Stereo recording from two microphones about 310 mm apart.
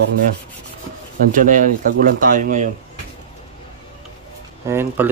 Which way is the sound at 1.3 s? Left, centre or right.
Right.